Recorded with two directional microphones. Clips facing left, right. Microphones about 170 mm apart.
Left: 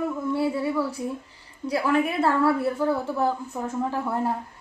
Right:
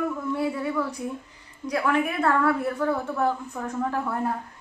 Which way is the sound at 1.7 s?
30° left (ahead or behind).